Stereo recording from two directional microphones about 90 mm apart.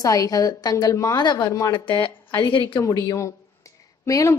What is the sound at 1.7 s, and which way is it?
Speech, 65° left (ahead or behind).